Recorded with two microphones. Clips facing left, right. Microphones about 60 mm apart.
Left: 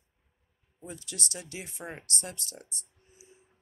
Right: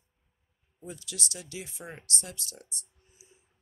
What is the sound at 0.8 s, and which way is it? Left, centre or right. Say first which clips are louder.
Speech: even; left.